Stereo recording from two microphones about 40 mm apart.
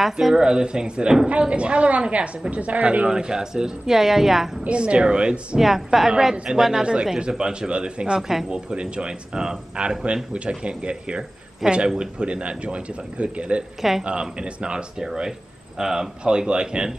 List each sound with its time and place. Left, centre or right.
0.0 s a man's voice: centre; by 3.1 s right
3.1 s speech: centre
4.6 s a man's voice: right
5.6 s speech: centre
6.3 s a man's voice: right
8.2 s speech: centre
8.5 s a man's voice: right
13.7 s speech: centre
14.3 s a man's voice: right